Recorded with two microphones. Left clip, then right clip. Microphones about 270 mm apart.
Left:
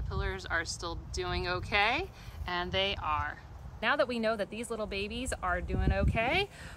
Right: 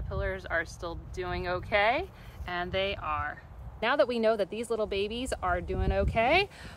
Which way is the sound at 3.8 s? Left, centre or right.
Right.